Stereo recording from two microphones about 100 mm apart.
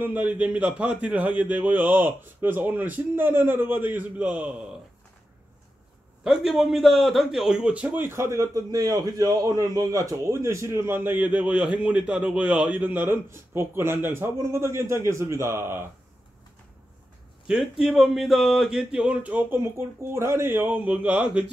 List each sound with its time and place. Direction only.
0.0 s a man's voice: 15° right (ahead or behind)
6.2 s speech: 5° right (ahead or behind)
8.1 s a man's voice: 30° right (ahead or behind)
17.5 s speech: 5° right (ahead or behind)
19.6 s a man's voice: 25° right (ahead or behind)